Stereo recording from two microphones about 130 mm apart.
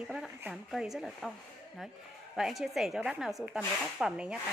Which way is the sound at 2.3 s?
Centre (ahead or behind).